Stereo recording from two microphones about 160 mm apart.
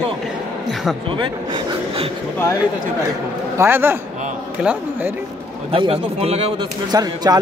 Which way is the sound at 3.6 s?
15° right (ahead or behind).